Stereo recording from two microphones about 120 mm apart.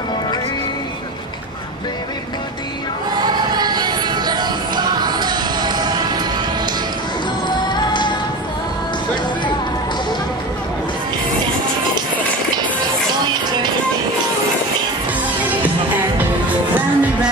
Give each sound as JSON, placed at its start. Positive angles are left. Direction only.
{"t": 3.3, "sound": "music", "side_deg": -35}
{"t": 7.4, "sound": "music", "side_deg": 40}
{"t": 13.2, "sound": "music", "side_deg": -35}
{"t": 15.4, "sound": "music", "side_deg": -15}